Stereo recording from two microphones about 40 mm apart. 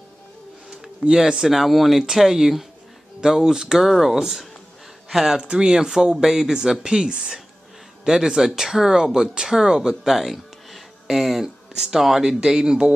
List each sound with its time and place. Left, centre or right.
0.7 s speech: centre
5.4 s speech: right